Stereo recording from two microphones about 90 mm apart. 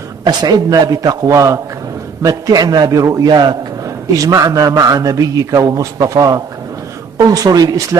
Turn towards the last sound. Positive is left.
turn(degrees=-45)  # may be behind; listen again after turning